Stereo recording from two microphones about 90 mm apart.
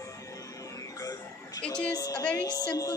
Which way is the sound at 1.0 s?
45° left (ahead or behind).